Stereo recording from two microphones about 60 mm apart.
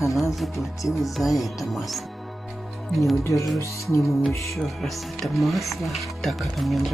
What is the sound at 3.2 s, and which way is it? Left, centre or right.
Music, left.